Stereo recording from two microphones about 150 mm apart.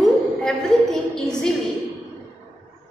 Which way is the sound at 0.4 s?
Centre (ahead or behind).